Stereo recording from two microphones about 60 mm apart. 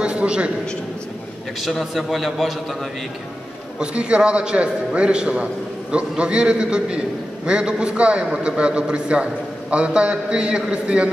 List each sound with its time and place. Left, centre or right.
0.0 s a man's voice: centre
1.6 s a man's voice: centre
3.8 s a man's voice: centre